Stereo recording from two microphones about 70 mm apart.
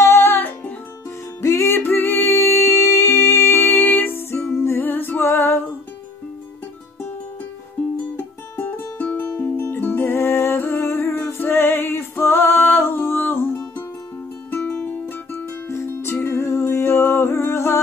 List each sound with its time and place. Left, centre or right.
0.0 s music: left
1.4 s music: left
1.8 s music: left
8.5 s music: left
15.7 s music: left